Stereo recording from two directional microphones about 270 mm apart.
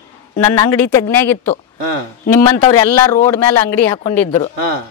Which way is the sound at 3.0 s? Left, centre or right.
Centre.